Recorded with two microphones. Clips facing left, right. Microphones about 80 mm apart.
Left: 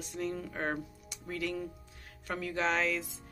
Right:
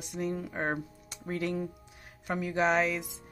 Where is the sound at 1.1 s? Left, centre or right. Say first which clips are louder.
Right 5 dB; right.